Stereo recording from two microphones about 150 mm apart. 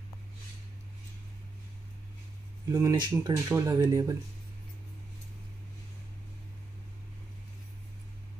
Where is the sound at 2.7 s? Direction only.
25° right (ahead or behind).